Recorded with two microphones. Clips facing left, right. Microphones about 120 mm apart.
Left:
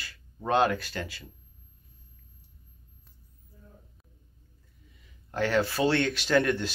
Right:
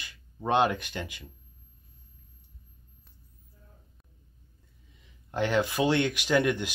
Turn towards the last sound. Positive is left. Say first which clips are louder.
# left 1 dB
turn(degrees=-15)  # may be behind; listen again after turning